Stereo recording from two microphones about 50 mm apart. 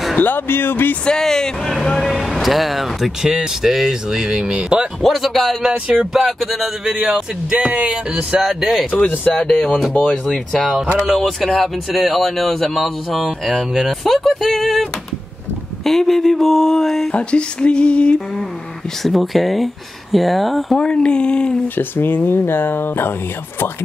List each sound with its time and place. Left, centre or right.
0.2 s speech: left
1.0 s speech: centre
2.3 s speech: centre
5.0 s speech: centre
5.7 s speech: centre
6.1 s speech: centre
6.8 s speech: centre
8.4 s speech: centre
8.9 s speech: left
9.4 s speech: centre
17.1 s speech: left
19.0 s speech: centre
20.7 s speech: centre
21.7 s speech: left